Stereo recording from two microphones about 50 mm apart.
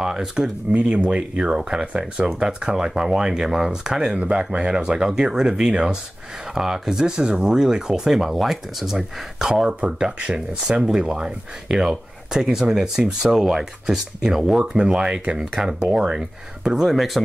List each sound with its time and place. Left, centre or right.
0.0 s speech: centre
0.7 s speech: right; by 17.2 s centre